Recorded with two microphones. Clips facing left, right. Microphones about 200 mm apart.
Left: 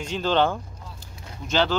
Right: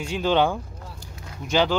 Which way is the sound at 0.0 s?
10° right (ahead or behind).